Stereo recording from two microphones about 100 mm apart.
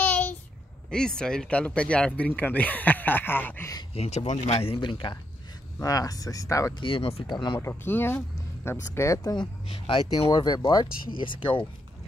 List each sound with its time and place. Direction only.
0.0 s a sound: 15° left (ahead or behind)
0.8 s speech: 10° left (ahead or behind)
3.9 s speech: 85° left
4.6 s speech: 75° left (ahead or behind)
4.8 s speech: 50° left (ahead or behind)
5.8 s speech: 35° left (ahead or behind)
6.7 s speech: 60° left (ahead or behind); by 7.2 s 75° left (ahead or behind)
7.2 s speech: 50° left (ahead or behind)
7.5 s speech: 20° left (ahead or behind)
9.7 s speech: 90° left
10.3 s speech: 45° left (ahead or behind)
11.1 s speech: 55° left (ahead or behind)